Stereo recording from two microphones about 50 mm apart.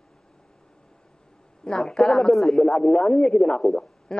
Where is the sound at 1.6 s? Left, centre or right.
Centre.